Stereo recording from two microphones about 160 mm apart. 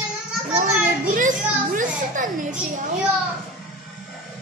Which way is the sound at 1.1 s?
55° right (ahead or behind).